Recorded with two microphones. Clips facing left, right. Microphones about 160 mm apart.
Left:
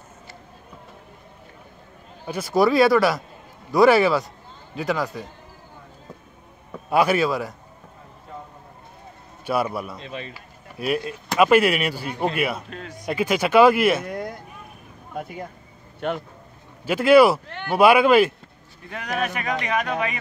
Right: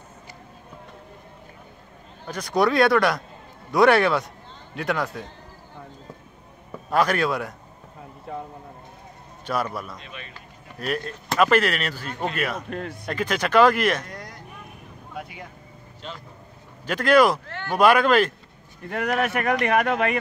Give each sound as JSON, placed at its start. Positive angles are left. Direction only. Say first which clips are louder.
{"t": 2.2, "sound": "a man's voice", "louder": "left 2 dB", "side_deg": 5}
{"t": 6.9, "sound": "a man's voice", "louder": "left 2 dB", "side_deg": 10}
{"t": 9.5, "sound": "speech", "louder": "left 3 dB", "side_deg": 10}
{"t": 9.9, "sound": "a man's voice", "louder": "left 7 dB", "side_deg": 30}
{"t": 10.3, "sound": "speech", "louder": "left 2 dB", "side_deg": 10}
{"t": 12.6, "sound": "speech", "louder": "right 5 dB", "side_deg": -55}
{"t": 13.0, "sound": "speech", "louder": "left 5 dB", "side_deg": 10}
{"t": 14.1, "sound": "vehicle", "louder": "left 9 dB", "side_deg": 55}
{"t": 15.1, "sound": "speech", "louder": "left 5 dB", "side_deg": 45}
{"t": 16.0, "sound": "speech", "louder": "left 12 dB", "side_deg": 55}
{"t": 16.8, "sound": "speech", "louder": "left 4 dB", "side_deg": 10}
{"t": 17.5, "sound": "a man's voice", "louder": "left 2 dB", "side_deg": 20}
{"t": 18.9, "sound": "speech", "louder": "right 3 dB", "side_deg": -60}